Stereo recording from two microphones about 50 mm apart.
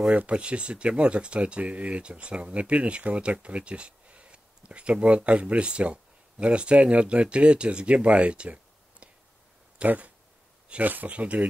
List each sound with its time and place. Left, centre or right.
0.1 s speech: right
9.8 s speech: right